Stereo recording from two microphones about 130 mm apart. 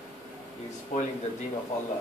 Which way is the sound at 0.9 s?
65° left (ahead or behind).